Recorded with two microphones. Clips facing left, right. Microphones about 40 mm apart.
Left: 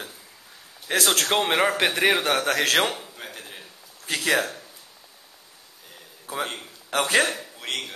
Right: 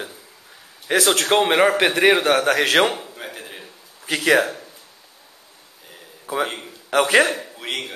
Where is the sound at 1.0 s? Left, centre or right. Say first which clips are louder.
Right 4 dB; centre.